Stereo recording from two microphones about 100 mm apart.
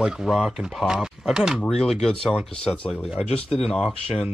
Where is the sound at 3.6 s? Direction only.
85° left.